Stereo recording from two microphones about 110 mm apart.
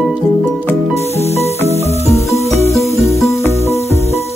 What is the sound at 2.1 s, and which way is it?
Music, 25° left (ahead or behind).